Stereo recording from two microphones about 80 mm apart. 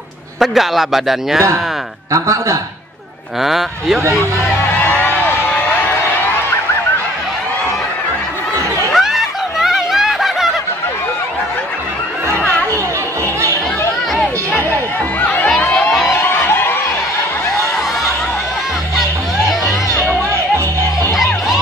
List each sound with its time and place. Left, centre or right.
0.4 s a man's voice: centre
2.1 s a man's voice: right
3.4 s a man's voice: centre
8.9 s snicker: centre
15.1 s a sound: centre
16.1 s music: left